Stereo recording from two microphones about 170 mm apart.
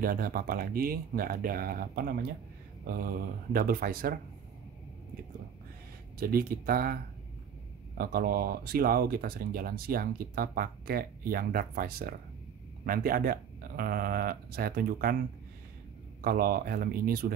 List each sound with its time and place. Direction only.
0.0 s speech: 60° right (ahead or behind)
6.1 s speech: 60° right (ahead or behind)
8.0 s speech: 60° right (ahead or behind)
16.2 s speech: 60° right (ahead or behind)